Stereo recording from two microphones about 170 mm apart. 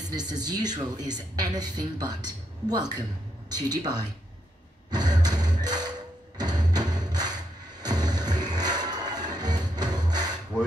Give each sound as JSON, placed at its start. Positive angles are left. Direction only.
{"t": 0.1, "sound": "speech", "side_deg": -25}
{"t": 4.9, "sound": "music", "side_deg": -25}